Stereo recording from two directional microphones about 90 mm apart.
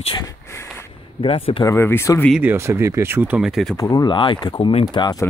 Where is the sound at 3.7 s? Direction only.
35° left (ahead or behind).